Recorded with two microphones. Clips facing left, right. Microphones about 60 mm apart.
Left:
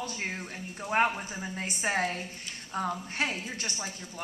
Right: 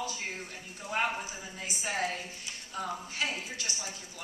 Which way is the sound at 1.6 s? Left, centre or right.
Left.